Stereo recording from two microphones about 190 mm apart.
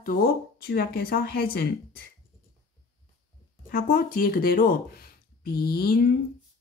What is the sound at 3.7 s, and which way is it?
Speech, 50° left (ahead or behind).